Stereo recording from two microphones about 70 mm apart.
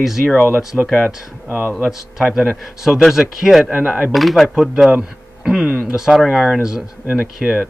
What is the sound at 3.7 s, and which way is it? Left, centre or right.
Speech, centre.